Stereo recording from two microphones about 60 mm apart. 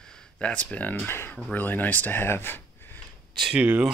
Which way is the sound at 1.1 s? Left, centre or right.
Left.